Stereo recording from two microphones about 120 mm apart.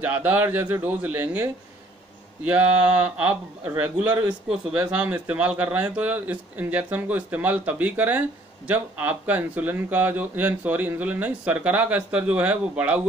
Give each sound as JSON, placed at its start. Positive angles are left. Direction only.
{"t": 0.0, "sound": "speech", "side_deg": -15}